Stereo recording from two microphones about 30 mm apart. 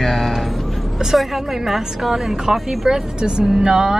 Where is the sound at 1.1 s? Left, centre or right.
Centre.